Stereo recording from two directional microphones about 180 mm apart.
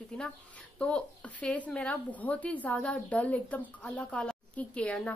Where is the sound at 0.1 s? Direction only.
5° left (ahead or behind).